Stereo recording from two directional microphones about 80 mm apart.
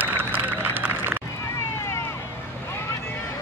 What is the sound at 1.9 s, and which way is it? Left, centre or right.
Vehicle, left.